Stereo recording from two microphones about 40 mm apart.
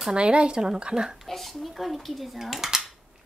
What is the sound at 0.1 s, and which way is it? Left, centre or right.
Speech, right.